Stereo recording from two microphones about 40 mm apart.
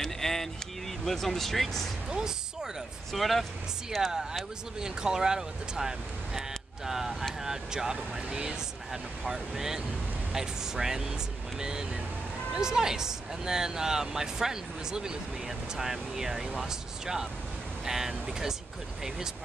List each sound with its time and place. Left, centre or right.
0.0 s vehicle: centre
1.0 s speech: centre
2.0 s music: centre
3.1 s speech: centre
4.1 s speech: centre
9.2 s speech: centre